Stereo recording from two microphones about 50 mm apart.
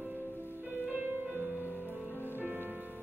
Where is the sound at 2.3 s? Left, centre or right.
Right.